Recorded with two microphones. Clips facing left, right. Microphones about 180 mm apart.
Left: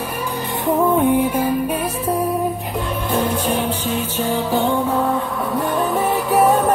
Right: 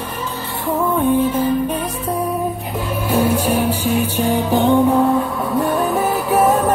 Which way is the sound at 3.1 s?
10° right (ahead or behind).